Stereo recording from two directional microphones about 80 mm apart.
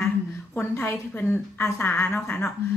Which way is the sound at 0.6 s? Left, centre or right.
Left.